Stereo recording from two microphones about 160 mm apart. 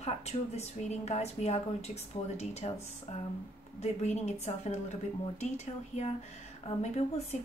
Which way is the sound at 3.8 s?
45° left (ahead or behind).